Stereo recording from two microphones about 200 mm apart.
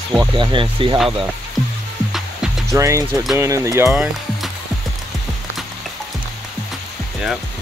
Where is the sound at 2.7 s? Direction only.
15° right (ahead or behind).